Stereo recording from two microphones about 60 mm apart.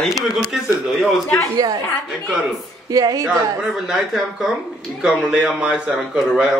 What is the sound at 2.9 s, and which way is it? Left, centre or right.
Speech, right.